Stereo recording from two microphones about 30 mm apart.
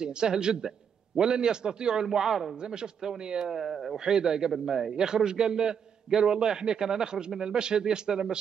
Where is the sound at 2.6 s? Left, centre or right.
Right.